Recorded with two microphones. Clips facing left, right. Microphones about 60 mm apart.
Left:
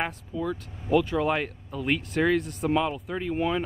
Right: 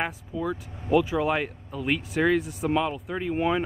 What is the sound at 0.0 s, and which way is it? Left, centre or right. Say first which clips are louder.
Speech: right 1 dB; centre.